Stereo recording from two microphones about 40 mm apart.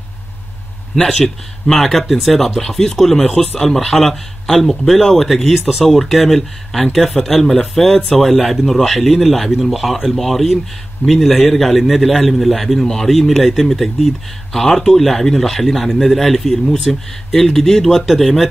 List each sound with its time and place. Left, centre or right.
0.9 s speech: centre